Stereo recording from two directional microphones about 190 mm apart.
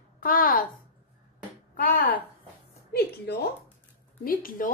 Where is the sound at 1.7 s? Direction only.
50° left (ahead or behind).